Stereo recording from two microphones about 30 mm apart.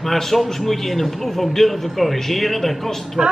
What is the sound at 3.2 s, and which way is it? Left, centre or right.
Speech, right.